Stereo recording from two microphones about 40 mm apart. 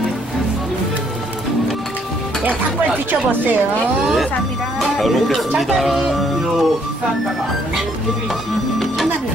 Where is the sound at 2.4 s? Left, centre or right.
Right.